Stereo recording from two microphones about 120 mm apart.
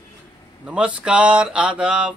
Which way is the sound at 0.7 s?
10° right (ahead or behind).